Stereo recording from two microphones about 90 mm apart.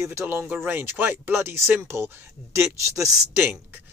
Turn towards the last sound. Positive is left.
turn(degrees=-35)  # may be behind; listen again after turning